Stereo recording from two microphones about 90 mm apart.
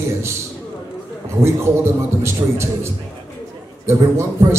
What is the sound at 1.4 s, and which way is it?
A man's voice, 30° right (ahead or behind).